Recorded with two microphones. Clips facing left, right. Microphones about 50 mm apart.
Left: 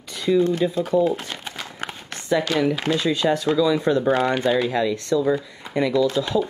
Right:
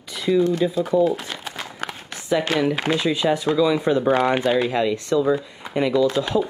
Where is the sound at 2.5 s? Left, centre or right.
Right.